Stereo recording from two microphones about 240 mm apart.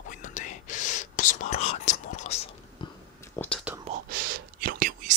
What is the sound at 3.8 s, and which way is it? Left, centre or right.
Whispering, right.